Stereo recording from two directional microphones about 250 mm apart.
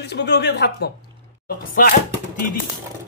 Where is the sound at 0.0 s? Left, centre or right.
Left.